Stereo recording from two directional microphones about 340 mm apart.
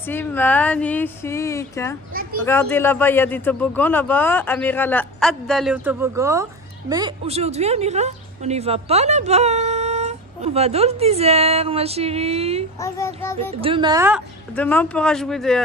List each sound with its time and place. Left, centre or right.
0.0 s a woman's voice: centre
12.8 s speech: centre
13.6 s a woman's voice: centre
14.5 s speech: centre